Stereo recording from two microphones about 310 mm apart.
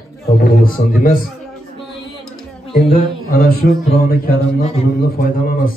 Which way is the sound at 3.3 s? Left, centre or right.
Left.